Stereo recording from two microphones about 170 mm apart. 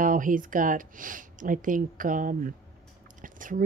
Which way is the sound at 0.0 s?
50° right (ahead or behind).